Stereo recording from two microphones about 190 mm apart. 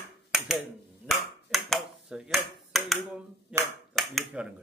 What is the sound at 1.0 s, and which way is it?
Finger snapping, centre (ahead or behind).